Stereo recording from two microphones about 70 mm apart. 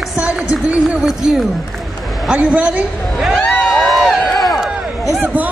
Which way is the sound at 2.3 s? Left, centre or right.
Centre.